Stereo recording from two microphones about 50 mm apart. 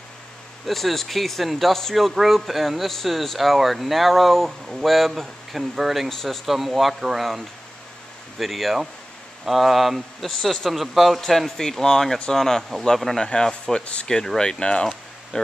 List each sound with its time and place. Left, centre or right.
0.7 s speech: centre
13.2 s speech: centre
14.0 s speech: centre